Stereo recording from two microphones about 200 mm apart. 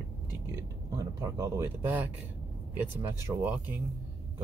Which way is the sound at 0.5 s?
15° right (ahead or behind).